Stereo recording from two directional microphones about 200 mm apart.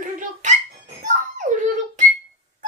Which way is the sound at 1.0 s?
40° right (ahead or behind).